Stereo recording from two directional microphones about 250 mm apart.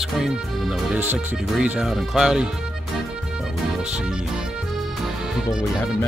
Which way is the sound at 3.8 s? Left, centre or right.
Centre.